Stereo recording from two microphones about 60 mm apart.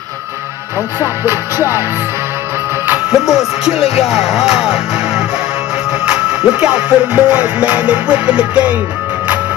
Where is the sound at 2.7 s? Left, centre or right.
Right.